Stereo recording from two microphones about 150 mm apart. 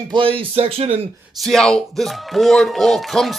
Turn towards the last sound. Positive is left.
turn(degrees=0)  # may be behind; listen again after turning